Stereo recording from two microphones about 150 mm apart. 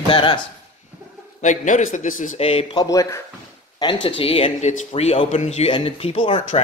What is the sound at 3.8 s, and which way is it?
Speech, 30° left (ahead or behind).